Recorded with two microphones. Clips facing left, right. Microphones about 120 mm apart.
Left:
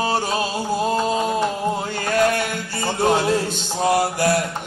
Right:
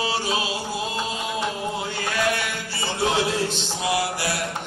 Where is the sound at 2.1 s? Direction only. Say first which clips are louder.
Left 7 dB; 45° left (ahead or behind).